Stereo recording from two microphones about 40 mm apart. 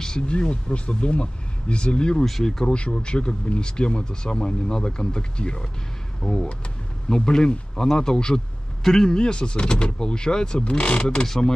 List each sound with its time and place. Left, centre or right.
0.0 s speech: left
2.2 s speech: centre
2.6 s speech: left
6.2 s speech: centre
11.2 s speech: centre